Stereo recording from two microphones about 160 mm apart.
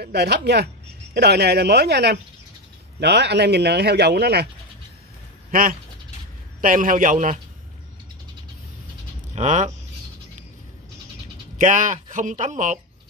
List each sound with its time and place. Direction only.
0.0 s a man's voice: 90° right
5.5 s a man's voice: 60° right (ahead or behind)
9.3 s speech: 45° right (ahead or behind)
11.5 s speech: 50° right (ahead or behind)